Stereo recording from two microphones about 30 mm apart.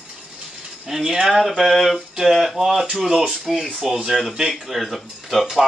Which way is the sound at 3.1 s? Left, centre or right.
Centre.